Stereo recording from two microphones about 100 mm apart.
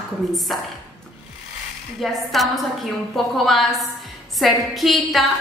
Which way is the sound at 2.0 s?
Centre (ahead or behind).